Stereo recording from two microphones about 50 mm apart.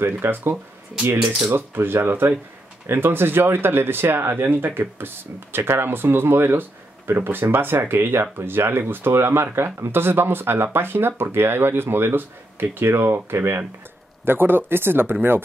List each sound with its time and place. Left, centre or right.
0.0 s speech: right